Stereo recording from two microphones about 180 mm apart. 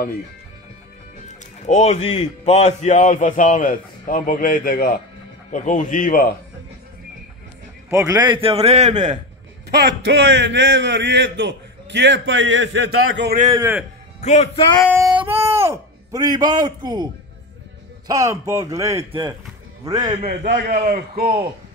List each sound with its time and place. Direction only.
1.4 s a man's voice: 40° left (ahead or behind)
7.9 s a man's voice: 20° right (ahead or behind); by 9.1 s 40° right (ahead or behind)
9.7 s a man's voice: 70° right (ahead or behind)
13.6 s speech: 10° right (ahead or behind)
14.2 s speech: 40° left (ahead or behind)
15.2 s a man's voice: 15° right (ahead or behind)
20.2 s a man's voice: 65° right (ahead or behind)